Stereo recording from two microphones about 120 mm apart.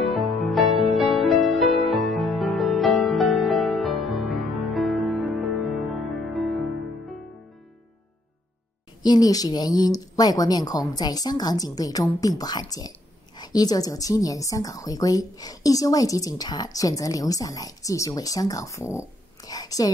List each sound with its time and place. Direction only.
0.0 s music: centre (ahead or behind)
9.0 s a woman's voice: 35° left (ahead or behind)